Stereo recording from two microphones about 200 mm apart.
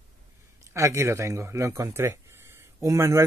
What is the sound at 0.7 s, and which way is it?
Speech, 15° right (ahead or behind).